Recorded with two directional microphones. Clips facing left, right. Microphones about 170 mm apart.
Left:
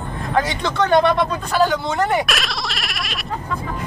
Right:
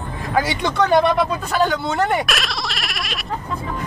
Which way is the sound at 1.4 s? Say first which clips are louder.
Left 1 dB; centre (ahead or behind).